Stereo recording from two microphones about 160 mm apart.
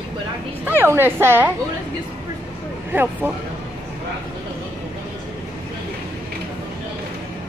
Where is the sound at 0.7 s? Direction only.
15° right (ahead or behind).